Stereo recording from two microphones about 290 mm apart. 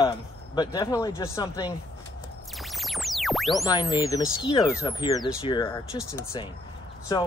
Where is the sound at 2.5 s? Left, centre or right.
Centre.